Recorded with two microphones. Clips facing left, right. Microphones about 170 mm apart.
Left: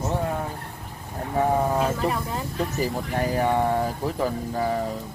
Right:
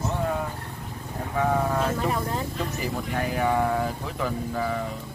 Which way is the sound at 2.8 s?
35° left (ahead or behind).